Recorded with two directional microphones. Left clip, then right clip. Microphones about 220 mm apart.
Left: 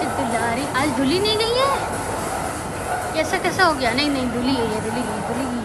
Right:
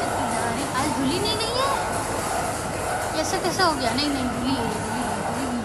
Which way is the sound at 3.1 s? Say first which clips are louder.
Left 6 dB; 20° right (ahead or behind).